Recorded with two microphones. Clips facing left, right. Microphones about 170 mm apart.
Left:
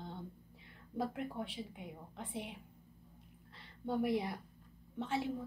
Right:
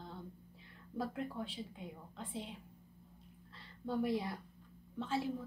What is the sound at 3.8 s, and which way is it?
A woman's voice, 20° left (ahead or behind).